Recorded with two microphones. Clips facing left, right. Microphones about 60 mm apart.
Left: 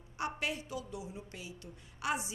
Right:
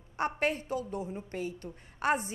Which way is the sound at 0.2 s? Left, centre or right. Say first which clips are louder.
Right 6 dB; right.